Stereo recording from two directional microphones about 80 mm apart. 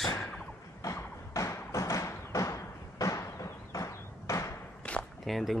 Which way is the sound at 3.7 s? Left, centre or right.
Left.